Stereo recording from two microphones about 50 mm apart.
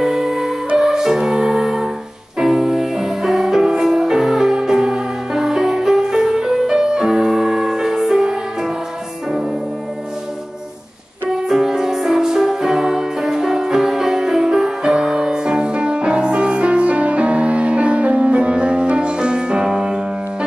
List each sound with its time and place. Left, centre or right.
0.0 s music: centre
11.4 s music: centre